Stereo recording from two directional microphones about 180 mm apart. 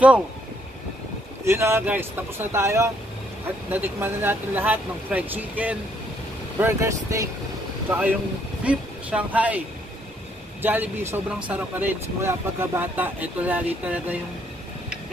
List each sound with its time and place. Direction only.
1.4 s speech: 15° right (ahead or behind)
10.6 s speech: 10° right (ahead or behind)